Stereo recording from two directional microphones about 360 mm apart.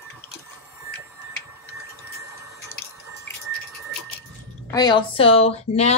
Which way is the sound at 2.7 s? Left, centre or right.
Centre.